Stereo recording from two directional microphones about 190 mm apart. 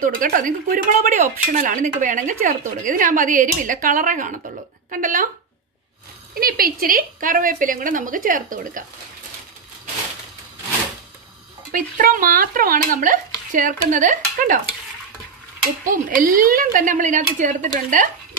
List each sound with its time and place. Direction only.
0.0 s speech: 45° right (ahead or behind)
6.4 s speech: 50° right (ahead or behind)
11.7 s speech: 45° right (ahead or behind)
15.8 s speech: 45° right (ahead or behind)